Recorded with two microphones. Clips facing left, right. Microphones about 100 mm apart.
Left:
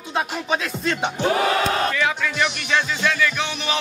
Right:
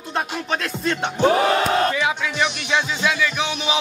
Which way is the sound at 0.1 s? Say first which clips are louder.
Left 1 dB; centre (ahead or behind).